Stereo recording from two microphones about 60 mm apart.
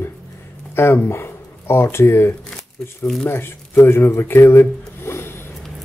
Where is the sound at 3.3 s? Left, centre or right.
Left.